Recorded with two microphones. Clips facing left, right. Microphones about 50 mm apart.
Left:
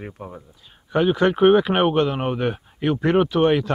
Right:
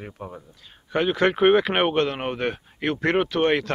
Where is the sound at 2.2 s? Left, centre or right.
Right.